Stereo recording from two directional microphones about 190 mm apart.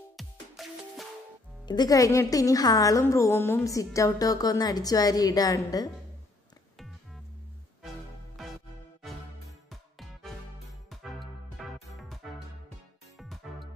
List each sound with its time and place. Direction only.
0.2 s music: centre (ahead or behind)
1.7 s a woman's voice: 20° left (ahead or behind)
8.4 s music: centre (ahead or behind)
9.7 s music: centre (ahead or behind)